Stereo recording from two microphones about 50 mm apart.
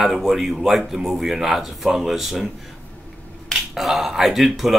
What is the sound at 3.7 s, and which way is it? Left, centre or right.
Speech, centre.